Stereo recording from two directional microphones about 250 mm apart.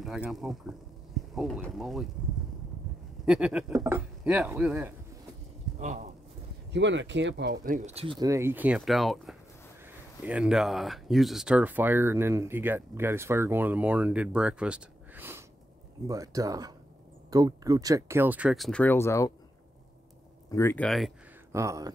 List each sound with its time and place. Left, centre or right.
0.0 s speech: centre
3.3 s speech: centre
5.8 s speech: right
6.7 s speech: right; by 19.3 s centre
20.4 s speech: centre
21.5 s speech: centre